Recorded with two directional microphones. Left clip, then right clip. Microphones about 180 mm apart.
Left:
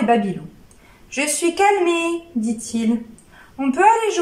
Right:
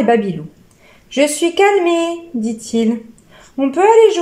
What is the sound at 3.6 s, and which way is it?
Speech, 25° right (ahead or behind).